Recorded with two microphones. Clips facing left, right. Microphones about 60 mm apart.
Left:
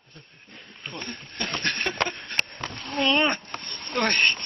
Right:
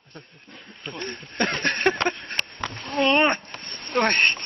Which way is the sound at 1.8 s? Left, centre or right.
Right.